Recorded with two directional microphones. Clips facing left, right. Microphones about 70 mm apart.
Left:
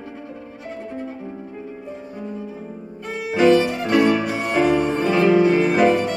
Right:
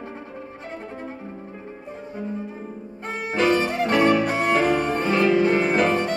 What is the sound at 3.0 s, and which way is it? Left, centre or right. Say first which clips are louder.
Music: left 5 dB; right.